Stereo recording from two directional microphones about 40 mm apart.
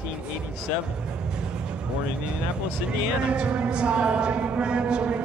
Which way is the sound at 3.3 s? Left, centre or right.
Right.